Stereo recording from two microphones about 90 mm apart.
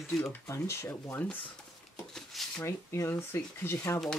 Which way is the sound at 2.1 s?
5° left (ahead or behind).